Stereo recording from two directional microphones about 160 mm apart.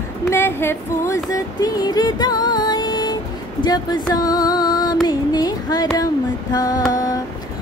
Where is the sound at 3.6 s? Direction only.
25° left (ahead or behind).